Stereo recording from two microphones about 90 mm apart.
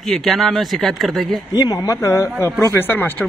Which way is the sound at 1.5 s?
45° left (ahead or behind).